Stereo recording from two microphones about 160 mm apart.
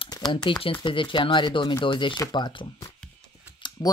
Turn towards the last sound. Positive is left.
turn(degrees=30)  # may be behind; listen again after turning